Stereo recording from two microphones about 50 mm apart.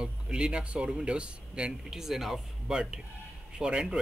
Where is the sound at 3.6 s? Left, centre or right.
Centre.